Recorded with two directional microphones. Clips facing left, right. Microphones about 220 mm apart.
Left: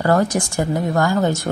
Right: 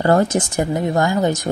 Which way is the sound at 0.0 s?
25° right (ahead or behind).